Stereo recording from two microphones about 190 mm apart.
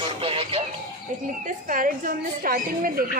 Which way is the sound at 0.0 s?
30° right (ahead or behind).